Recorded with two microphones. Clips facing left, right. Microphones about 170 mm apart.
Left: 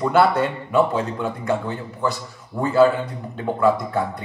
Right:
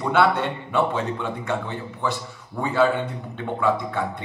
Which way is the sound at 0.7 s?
40° left (ahead or behind).